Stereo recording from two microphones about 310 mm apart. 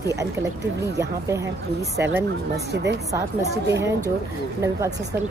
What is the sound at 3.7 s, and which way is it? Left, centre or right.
Speech, centre.